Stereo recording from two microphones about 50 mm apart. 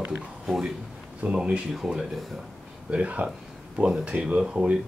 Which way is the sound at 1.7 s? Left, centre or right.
Centre.